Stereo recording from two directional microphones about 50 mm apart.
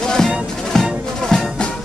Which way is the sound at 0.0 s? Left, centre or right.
Centre.